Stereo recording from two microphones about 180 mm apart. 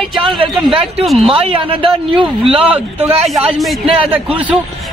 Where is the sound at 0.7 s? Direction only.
Centre (ahead or behind).